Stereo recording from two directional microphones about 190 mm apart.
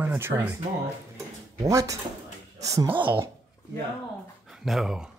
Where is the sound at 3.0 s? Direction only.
10° right (ahead or behind).